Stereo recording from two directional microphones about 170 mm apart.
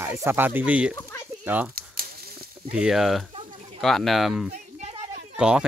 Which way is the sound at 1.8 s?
60° right (ahead or behind).